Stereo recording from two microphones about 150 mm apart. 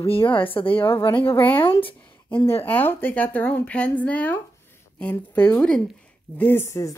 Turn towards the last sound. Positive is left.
turn(degrees=20)  # may be behind; listen again after turning